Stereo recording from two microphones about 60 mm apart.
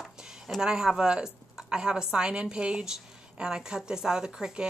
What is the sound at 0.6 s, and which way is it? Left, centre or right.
A woman's voice, centre.